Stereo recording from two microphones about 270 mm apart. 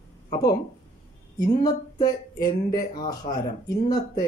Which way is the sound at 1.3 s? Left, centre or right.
Centre.